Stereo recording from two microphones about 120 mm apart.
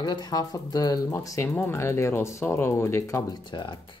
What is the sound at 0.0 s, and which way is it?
Speech, 35° left (ahead or behind).